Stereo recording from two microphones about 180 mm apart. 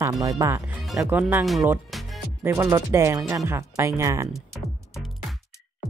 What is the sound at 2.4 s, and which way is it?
Speech, 15° right (ahead or behind).